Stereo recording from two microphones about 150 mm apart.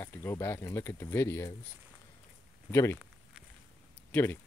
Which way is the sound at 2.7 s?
15° left (ahead or behind).